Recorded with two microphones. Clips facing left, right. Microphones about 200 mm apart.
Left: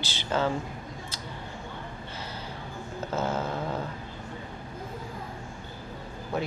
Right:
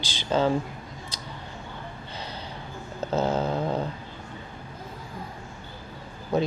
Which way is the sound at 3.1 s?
15° right (ahead or behind).